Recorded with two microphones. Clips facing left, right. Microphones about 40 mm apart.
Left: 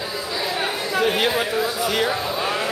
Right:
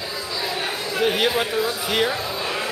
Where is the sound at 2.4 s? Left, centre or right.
Centre.